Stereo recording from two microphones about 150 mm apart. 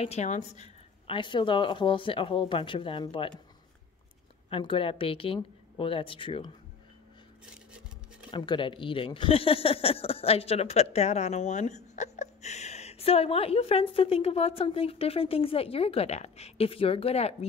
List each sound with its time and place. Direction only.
0.0 s a woman's voice: 45° left (ahead or behind)
1.0 s speech: 35° left (ahead or behind)
4.5 s speech: 35° left (ahead or behind)
8.3 s speech: 30° left (ahead or behind)